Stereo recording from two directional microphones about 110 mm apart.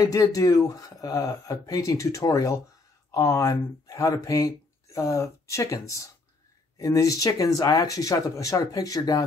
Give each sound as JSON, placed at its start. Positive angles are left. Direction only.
{"t": 0.0, "sound": "speech", "side_deg": 30}